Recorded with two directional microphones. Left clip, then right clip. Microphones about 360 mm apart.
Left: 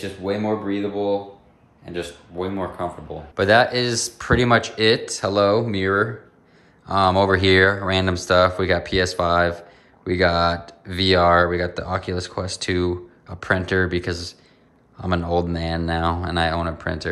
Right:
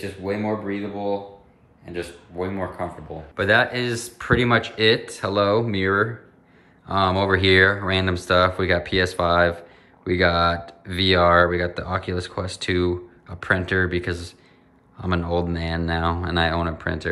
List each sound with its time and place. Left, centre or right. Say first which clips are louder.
0.2 s speech: left 2 dB; centre